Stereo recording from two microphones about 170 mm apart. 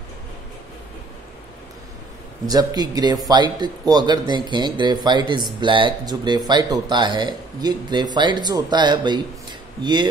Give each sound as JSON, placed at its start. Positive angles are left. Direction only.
{"t": 2.4, "sound": "speech", "side_deg": -25}